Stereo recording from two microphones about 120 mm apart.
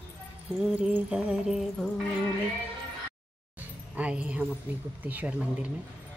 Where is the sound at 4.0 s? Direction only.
10° right (ahead or behind).